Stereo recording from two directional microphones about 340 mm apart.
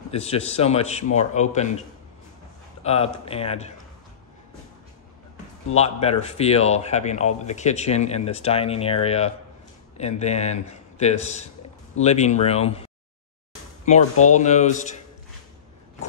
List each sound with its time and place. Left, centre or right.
0.1 s speech: centre
2.8 s speech: centre
5.8 s speech: centre
14.2 s speech: left